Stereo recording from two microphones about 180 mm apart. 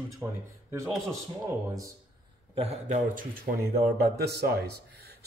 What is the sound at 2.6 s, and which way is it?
Speech, 35° right (ahead or behind).